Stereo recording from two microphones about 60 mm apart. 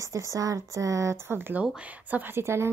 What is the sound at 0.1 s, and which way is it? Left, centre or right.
Speech, right.